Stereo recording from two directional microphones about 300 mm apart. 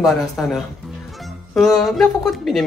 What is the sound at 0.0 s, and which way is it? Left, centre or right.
Speech, centre.